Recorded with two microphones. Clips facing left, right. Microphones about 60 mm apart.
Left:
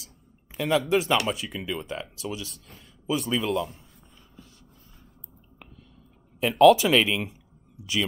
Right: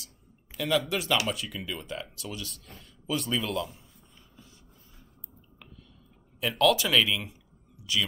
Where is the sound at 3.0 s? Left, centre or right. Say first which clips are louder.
Left 4 dB; centre.